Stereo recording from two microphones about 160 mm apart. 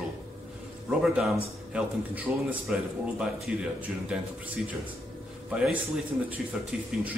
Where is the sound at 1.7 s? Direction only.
5° right (ahead or behind).